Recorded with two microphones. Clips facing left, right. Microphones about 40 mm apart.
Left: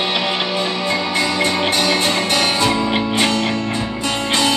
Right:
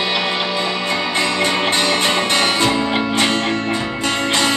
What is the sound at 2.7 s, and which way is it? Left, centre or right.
Music, right.